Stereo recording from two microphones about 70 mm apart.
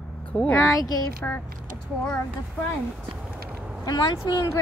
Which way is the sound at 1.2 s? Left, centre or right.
Left.